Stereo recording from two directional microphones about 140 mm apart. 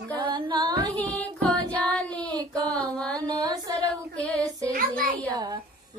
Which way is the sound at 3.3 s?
25° right (ahead or behind).